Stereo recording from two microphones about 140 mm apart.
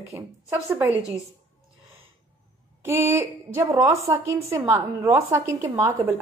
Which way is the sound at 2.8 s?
15° right (ahead or behind).